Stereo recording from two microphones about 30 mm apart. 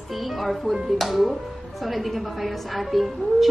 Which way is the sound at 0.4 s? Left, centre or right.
Centre.